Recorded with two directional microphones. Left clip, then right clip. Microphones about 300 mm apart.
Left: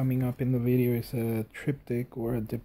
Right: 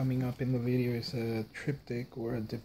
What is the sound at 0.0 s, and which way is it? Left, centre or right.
Speech, left.